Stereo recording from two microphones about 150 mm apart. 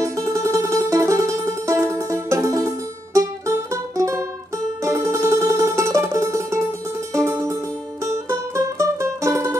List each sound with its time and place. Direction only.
0.0 s music: 20° right (ahead or behind)